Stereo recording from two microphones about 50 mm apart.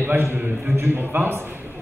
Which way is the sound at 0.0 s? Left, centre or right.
Right.